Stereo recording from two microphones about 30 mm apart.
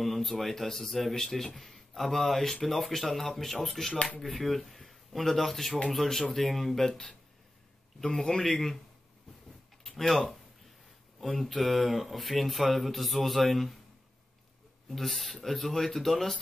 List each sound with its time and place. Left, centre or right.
0.0 s speech: centre
6.9 s speech: left
9.8 s a sound: centre
11.1 s speech: centre
15.0 s speech: centre